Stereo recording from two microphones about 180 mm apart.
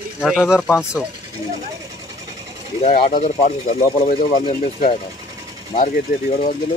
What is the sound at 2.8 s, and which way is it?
Speech, 45° left (ahead or behind).